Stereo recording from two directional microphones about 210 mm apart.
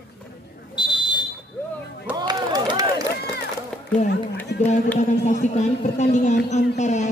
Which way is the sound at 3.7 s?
5° left (ahead or behind).